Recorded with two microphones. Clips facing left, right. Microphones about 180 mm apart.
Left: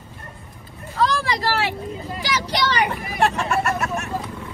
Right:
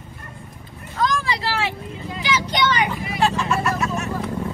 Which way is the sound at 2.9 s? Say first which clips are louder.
Even; 60° left (ahead or behind).